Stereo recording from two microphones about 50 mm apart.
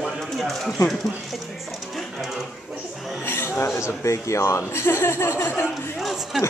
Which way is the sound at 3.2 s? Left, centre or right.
Left.